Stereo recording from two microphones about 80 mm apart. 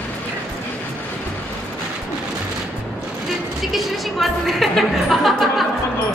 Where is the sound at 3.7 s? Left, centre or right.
Centre.